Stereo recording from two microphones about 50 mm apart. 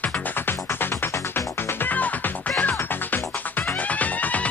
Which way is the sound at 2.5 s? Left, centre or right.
Left.